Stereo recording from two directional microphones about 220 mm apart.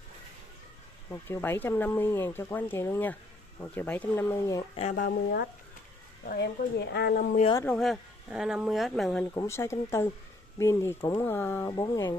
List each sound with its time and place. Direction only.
1.1 s speech: 10° left (ahead or behind)
4.7 s a woman's voice: 30° left (ahead or behind)
5.0 s speech: 45° left (ahead or behind)
7.6 s speech: centre (ahead or behind)
9.2 s speech: 15° left (ahead or behind)